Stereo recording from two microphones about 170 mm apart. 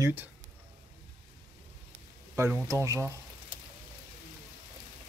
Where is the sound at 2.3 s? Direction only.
15° right (ahead or behind).